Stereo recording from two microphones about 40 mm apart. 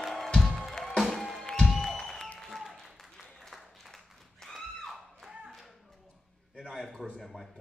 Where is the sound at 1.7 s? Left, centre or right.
Centre.